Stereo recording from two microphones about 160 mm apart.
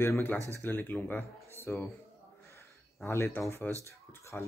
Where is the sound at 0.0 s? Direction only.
15° left (ahead or behind).